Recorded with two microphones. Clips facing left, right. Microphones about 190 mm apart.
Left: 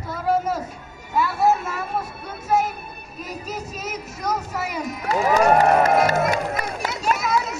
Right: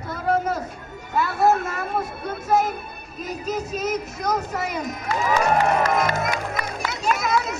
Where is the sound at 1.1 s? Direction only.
5° left (ahead or behind).